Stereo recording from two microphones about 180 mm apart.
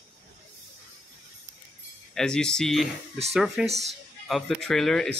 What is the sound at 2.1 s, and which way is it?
Speech, 5° left (ahead or behind).